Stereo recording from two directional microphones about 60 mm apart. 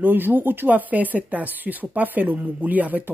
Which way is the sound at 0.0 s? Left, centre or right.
Right.